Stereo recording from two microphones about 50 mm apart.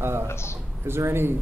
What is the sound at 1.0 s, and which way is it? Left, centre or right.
Speech, right.